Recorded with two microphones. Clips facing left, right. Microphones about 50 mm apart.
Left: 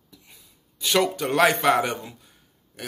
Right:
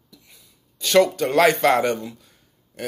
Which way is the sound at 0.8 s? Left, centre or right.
Centre.